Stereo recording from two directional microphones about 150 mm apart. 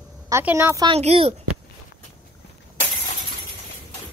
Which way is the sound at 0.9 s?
40° right (ahead or behind).